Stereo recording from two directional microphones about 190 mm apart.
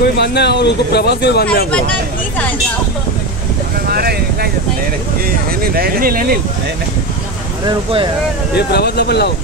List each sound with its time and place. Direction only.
0.2 s speech: 60° left (ahead or behind)
3.9 s a sound: 55° right (ahead or behind)
5.6 s speech: 50° right (ahead or behind)
7.6 s speech: 25° right (ahead or behind)
8.5 s speech: 60° left (ahead or behind)